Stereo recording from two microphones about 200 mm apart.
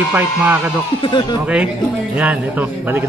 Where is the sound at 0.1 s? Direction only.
10° right (ahead or behind).